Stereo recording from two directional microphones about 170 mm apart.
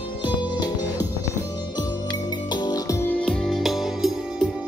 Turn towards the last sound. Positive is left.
turn(degrees=0)  # may be behind; listen again after turning